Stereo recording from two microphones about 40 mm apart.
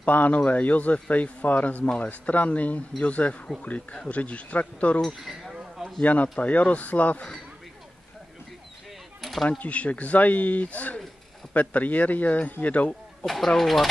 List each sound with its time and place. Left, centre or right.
0.0 s speech: left
5.0 s speech: centre
5.8 s a sound: centre
6.4 s speech: left
9.2 s a sound: centre
9.6 s speech: left
13.2 s speech: centre